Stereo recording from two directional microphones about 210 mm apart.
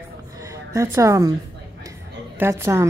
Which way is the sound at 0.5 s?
15° right (ahead or behind).